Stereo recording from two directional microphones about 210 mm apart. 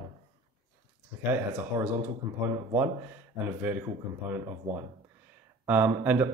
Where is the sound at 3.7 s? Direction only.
10° right (ahead or behind).